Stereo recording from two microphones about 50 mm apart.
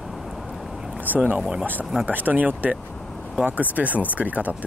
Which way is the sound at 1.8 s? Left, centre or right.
Centre.